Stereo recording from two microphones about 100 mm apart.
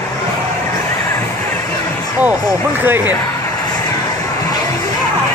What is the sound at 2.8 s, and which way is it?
Speech, 20° right (ahead or behind).